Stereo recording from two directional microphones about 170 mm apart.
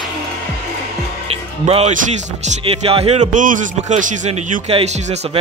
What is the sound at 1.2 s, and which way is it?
Music, 35° right (ahead or behind).